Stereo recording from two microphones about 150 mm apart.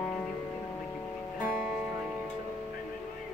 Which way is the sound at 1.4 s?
5° right (ahead or behind).